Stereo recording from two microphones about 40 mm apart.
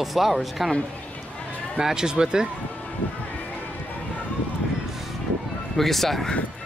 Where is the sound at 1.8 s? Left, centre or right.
Centre.